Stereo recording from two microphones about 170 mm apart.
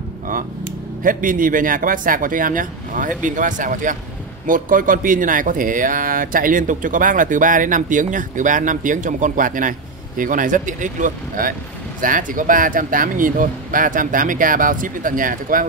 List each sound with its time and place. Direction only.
1.0 s speech: 55° right (ahead or behind)